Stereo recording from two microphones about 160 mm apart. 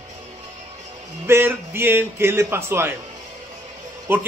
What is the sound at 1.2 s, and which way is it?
A man's voice, 15° right (ahead or behind).